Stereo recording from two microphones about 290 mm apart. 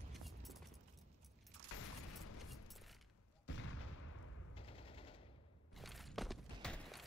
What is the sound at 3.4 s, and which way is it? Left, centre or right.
Gunshot, left.